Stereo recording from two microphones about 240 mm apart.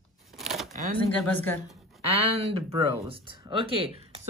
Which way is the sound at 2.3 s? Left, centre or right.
Right.